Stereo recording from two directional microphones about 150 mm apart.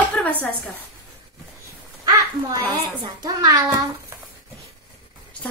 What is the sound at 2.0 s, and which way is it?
A child's voice, 25° right (ahead or behind).